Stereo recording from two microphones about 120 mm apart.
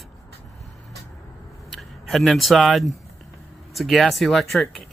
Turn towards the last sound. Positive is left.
turn(degrees=0)  # may be behind; listen again after turning